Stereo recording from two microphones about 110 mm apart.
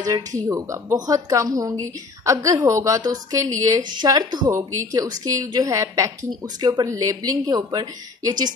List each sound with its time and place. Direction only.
0.5 s a woman's voice: 30° right (ahead or behind)